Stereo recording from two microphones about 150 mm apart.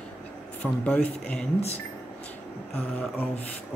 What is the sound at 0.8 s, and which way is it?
Speech, 5° left (ahead or behind).